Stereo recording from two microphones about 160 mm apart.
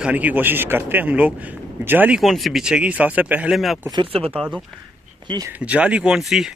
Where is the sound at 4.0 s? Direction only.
35° right (ahead or behind).